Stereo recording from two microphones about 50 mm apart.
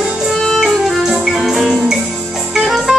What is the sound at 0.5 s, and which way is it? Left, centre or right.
Music, centre.